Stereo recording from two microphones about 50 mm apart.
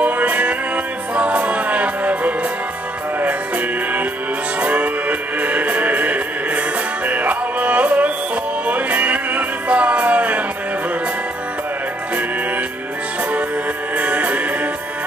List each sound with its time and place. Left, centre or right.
0.0 s music: right
13.9 s music: right